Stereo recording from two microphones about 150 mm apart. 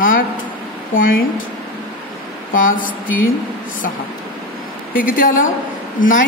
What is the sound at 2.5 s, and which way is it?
Speech, 65° left (ahead or behind).